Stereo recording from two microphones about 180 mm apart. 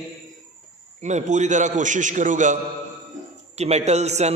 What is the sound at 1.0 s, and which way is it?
A man's voice, 40° right (ahead or behind).